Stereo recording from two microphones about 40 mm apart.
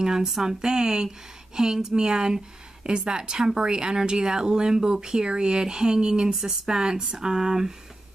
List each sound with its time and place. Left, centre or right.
0.0 s a woman's voice: centre
6.3 s speech: centre
6.7 s speech: centre